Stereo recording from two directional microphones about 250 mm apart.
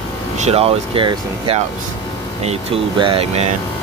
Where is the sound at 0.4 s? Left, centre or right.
Right.